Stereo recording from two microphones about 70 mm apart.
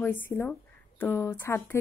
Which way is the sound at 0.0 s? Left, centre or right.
Left.